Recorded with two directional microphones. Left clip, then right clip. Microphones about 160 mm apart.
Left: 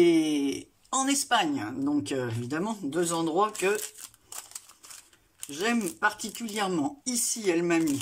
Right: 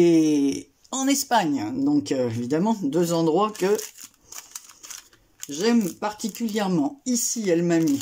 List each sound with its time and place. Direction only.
0.0 s speech: 30° right (ahead or behind)
5.5 s speech: 30° right (ahead or behind)